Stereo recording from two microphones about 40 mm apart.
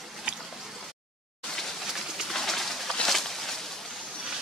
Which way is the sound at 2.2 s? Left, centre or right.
Centre.